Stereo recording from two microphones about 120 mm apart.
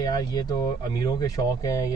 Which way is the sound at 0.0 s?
35° left (ahead or behind).